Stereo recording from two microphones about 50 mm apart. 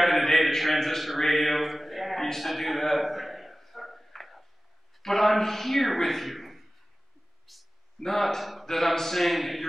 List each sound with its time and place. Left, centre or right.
0.0 s a man's voice: centre
2.2 s a sound: centre
5.0 s a man's voice: centre